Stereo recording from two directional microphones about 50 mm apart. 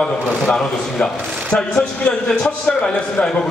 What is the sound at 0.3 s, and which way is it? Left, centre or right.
Speech, centre.